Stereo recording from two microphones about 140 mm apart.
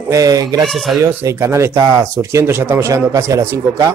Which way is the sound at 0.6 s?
Centre (ahead or behind).